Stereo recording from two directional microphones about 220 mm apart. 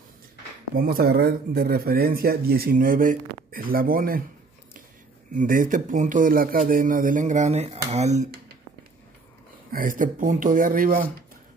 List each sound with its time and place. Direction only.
0.7 s speech: 40° right (ahead or behind)
5.3 s speech: 35° right (ahead or behind)
9.7 s speech: 40° right (ahead or behind)